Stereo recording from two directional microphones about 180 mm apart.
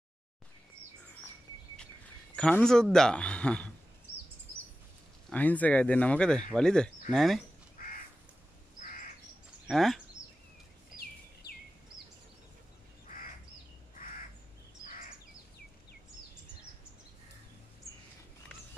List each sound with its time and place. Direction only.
2.3 s a man's voice: 5° left (ahead or behind)
5.3 s a man's voice: 10° left (ahead or behind)
8.7 s crow: 50° left (ahead or behind)
9.7 s speech: centre (ahead or behind)